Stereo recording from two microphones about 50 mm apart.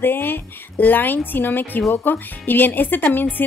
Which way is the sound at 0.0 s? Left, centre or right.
Left.